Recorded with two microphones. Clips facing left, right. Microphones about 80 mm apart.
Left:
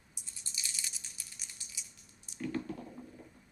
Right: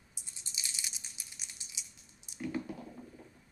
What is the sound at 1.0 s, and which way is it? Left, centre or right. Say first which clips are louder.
Crushing: right 1 dB; centre.